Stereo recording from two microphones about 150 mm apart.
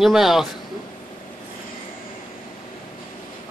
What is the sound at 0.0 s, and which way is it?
Speech, centre (ahead or behind).